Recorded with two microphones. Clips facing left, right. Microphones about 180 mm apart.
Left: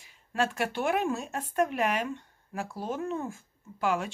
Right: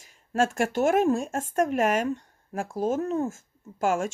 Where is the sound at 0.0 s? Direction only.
45° right (ahead or behind).